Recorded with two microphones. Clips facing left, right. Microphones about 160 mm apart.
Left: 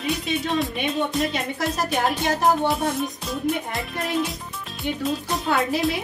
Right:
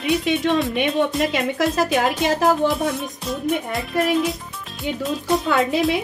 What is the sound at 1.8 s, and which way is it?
Speech, 90° right.